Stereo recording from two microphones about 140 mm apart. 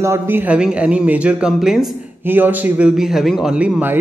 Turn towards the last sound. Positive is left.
turn(degrees=-10)  # may be behind; listen again after turning